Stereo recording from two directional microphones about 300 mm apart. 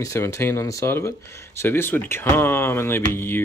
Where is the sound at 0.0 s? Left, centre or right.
Centre.